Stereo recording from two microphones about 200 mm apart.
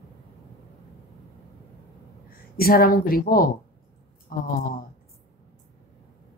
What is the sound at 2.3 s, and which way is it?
Speech, 50° left (ahead or behind).